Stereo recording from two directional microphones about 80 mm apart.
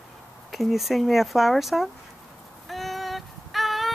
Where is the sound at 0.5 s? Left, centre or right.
Centre.